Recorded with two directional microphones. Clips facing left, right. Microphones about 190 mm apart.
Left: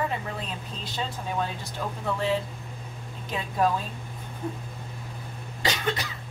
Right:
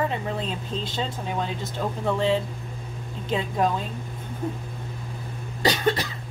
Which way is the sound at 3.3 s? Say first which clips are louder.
Right 3 dB; 25° right (ahead or behind).